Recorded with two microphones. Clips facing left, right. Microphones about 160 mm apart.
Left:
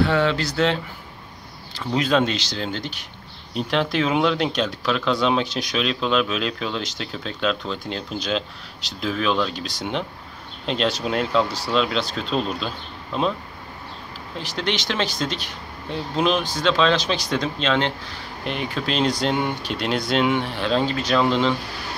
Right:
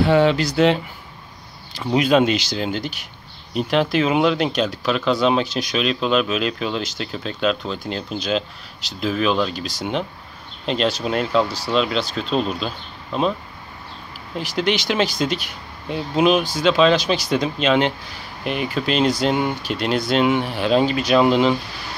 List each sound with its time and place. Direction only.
0.0 s speech: 15° right (ahead or behind)
14.4 s speech: 10° right (ahead or behind)